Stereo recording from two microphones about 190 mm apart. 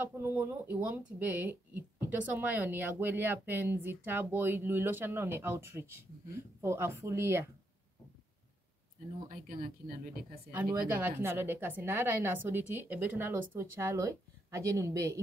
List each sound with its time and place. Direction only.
0.0 s speech: 10° right (ahead or behind)
9.3 s speech: 50° right (ahead or behind)
10.5 s speech: 10° right (ahead or behind)